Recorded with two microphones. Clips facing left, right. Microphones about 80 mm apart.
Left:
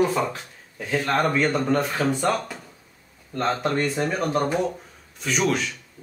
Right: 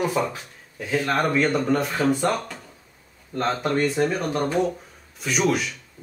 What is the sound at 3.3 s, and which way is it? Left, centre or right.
Speech, centre.